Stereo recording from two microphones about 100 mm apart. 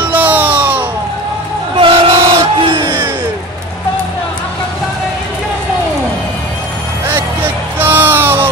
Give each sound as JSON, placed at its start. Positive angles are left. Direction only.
{"t": 0.1, "sound": "music", "side_deg": -15}
{"t": 1.8, "sound": "crowd", "side_deg": -65}
{"t": 7.8, "sound": "music", "side_deg": -20}